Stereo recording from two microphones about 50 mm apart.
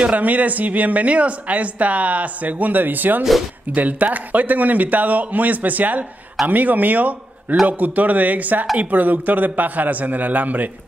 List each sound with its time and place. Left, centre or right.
0.0 s speech: right